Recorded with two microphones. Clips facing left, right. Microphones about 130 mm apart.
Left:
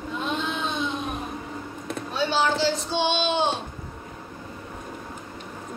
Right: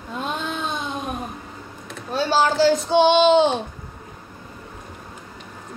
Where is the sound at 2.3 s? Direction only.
45° right (ahead or behind).